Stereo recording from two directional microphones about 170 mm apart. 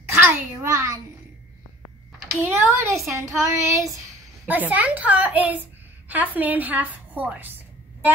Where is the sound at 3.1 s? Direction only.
20° right (ahead or behind).